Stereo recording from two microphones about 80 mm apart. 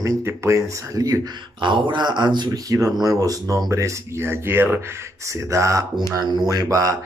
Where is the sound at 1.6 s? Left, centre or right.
Right.